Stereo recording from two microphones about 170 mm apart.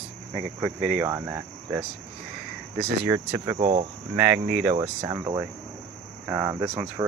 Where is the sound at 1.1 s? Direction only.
10° right (ahead or behind).